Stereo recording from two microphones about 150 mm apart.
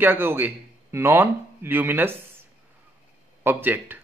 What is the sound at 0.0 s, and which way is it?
Speech, 15° right (ahead or behind).